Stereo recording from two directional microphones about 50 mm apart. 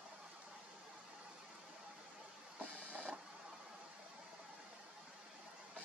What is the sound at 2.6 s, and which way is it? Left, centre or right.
Printer, right.